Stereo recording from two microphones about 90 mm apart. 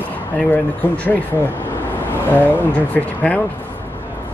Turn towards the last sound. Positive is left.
turn(degrees=15)  # may be behind; listen again after turning